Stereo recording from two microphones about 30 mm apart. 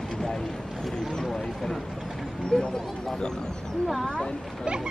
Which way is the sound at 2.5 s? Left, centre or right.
Left.